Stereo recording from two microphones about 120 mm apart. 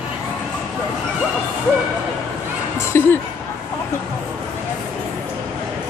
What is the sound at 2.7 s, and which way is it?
Chuckle, 20° left (ahead or behind).